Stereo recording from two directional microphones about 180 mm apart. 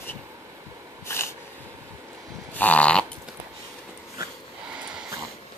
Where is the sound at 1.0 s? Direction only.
15° left (ahead or behind).